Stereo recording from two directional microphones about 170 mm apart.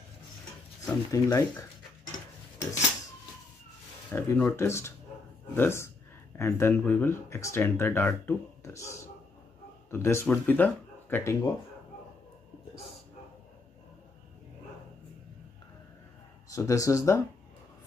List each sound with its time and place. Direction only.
0.8 s speech: 20° left (ahead or behind)
4.1 s speech: 15° left (ahead or behind)
16.4 s speech: 20° left (ahead or behind)